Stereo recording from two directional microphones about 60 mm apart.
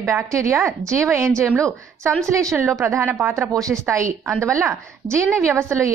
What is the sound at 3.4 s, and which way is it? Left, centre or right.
Speech, right.